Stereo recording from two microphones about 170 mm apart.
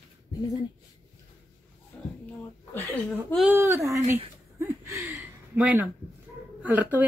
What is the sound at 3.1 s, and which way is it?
Speech, centre (ahead or behind).